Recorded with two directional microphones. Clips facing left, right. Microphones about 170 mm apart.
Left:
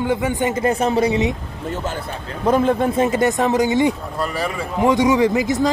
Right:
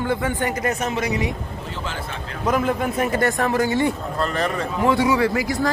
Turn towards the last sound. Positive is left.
turn(degrees=20)  # may be behind; listen again after turning